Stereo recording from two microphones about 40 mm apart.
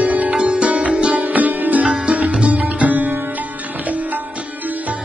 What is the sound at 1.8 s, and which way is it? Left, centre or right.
Music, right.